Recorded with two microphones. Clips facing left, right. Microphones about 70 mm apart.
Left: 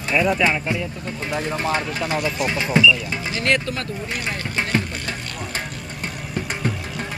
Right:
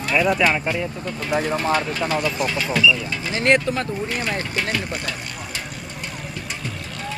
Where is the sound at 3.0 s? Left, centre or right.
Left.